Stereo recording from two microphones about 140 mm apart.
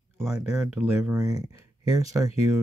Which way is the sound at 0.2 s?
5° right (ahead or behind).